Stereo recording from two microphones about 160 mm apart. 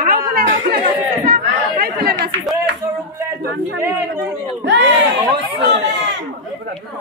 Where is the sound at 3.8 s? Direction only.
15° right (ahead or behind).